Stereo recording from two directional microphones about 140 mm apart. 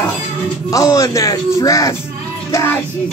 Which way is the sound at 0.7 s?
25° left (ahead or behind).